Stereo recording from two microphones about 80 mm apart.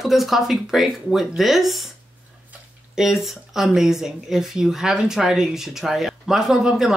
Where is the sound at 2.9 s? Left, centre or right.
Centre.